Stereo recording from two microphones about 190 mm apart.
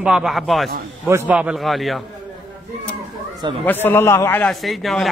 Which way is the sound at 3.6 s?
10° left (ahead or behind).